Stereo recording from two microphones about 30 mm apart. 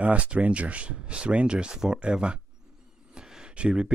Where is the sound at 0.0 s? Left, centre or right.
Right.